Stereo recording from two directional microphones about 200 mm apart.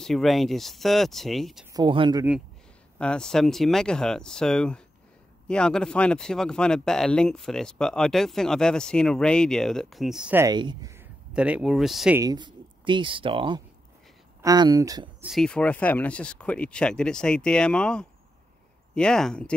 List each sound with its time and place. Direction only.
0.0 s speech: centre (ahead or behind)
1.7 s speech: 25° right (ahead or behind)
3.0 s speech: 5° left (ahead or behind)
12.2 s speech: 20° right (ahead or behind)
15.2 s speech: centre (ahead or behind)